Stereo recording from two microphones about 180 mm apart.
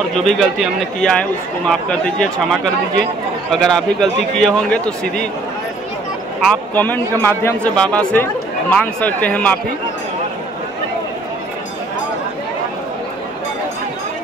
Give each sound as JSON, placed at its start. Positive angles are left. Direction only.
{"t": 0.1, "sound": "a man's voice", "side_deg": 0}
{"t": 6.4, "sound": "a man's voice", "side_deg": 5}